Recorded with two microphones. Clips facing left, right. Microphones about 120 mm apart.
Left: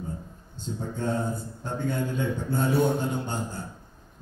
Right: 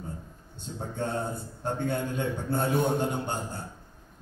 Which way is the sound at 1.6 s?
55° right (ahead or behind).